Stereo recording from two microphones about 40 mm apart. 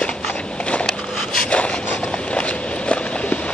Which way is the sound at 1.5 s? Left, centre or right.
Left.